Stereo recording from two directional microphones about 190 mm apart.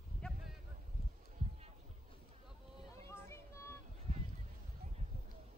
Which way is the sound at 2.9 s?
15° left (ahead or behind).